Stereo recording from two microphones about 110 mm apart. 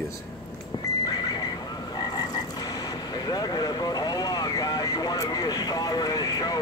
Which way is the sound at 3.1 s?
35° left (ahead or behind).